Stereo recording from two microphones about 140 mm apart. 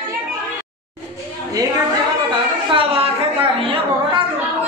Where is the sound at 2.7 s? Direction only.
40° right (ahead or behind).